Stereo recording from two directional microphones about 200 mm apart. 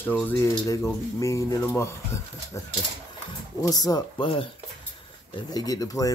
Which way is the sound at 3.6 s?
20° left (ahead or behind).